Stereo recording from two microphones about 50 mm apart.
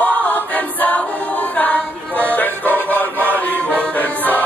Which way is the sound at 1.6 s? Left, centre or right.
Left.